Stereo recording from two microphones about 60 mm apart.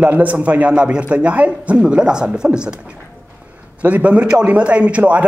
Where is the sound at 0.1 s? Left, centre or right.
Right.